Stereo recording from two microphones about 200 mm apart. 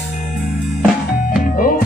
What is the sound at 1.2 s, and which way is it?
Music, 45° left (ahead or behind).